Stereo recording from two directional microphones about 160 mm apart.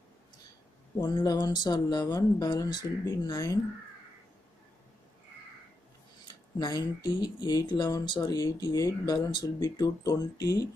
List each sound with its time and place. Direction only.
1.0 s speech: 25° left (ahead or behind)
6.6 s speech: 25° left (ahead or behind)